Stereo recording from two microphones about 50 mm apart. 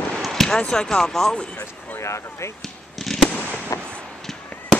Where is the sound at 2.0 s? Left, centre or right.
Left.